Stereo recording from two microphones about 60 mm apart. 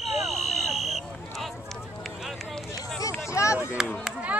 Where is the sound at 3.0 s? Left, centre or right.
Left.